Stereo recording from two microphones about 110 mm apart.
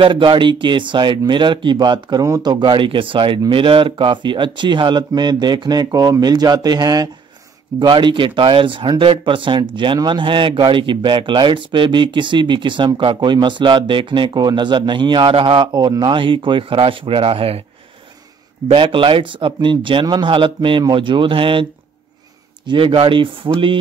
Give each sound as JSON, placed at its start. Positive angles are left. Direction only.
{"t": 0.0, "sound": "speech", "side_deg": -45}
{"t": 18.7, "sound": "speech", "side_deg": -50}
{"t": 22.7, "sound": "speech", "side_deg": -50}